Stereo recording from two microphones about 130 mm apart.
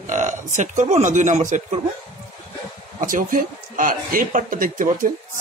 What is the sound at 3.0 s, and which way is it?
A man's voice, 90° right.